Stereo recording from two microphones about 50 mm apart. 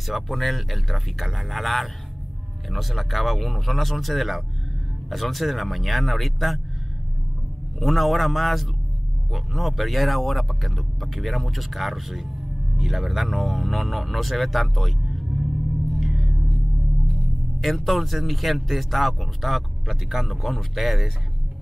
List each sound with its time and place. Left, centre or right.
0.0 s speech: centre
7.8 s speech: centre
15.9 s music: centre
17.6 s speech: centre